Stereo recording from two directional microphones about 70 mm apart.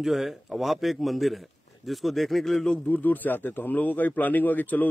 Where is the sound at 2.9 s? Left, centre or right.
Left.